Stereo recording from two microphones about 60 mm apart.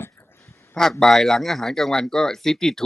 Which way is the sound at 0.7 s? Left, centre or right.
Centre.